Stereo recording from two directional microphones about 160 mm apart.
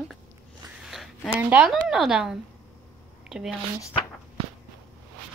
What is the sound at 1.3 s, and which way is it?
Speech, 10° right (ahead or behind).